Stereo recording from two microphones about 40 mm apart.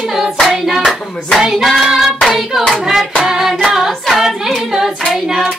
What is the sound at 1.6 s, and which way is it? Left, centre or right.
Hands, centre.